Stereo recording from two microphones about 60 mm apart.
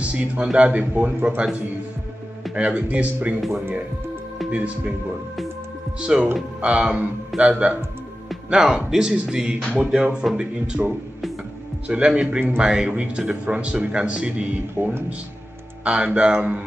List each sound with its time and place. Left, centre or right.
0.0 s speech: right
3.3 s speech: centre
4.5 s speech: right
5.9 s speech: centre
11.9 s speech: centre
14.8 s speech: right
15.8 s speech: centre